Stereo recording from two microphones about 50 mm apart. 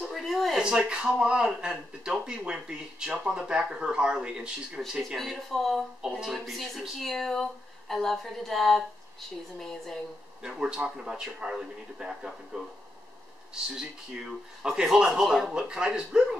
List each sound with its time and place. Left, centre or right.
0.0 s a sound: centre
0.6 s speech: centre
5.1 s a woman's voice: centre
10.4 s speech: centre
13.7 s speech: centre